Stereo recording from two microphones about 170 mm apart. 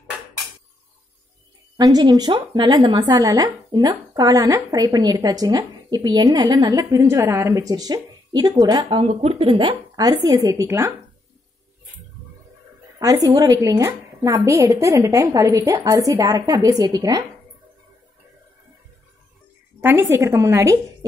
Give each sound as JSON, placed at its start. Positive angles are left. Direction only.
{"t": 1.8, "sound": "a woman's voice", "side_deg": -25}
{"t": 8.8, "sound": "a woman's voice", "side_deg": -35}
{"t": 13.0, "sound": "a woman's voice", "side_deg": -20}
{"t": 19.8, "sound": "a woman's voice", "side_deg": -15}